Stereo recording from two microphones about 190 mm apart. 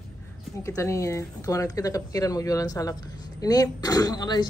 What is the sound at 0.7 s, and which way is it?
Speech, 15° left (ahead or behind).